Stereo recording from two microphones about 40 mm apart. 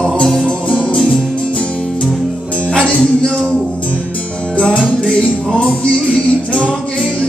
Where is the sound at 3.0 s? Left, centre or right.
Centre.